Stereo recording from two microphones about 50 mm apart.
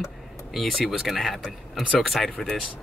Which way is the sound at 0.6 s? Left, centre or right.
Centre.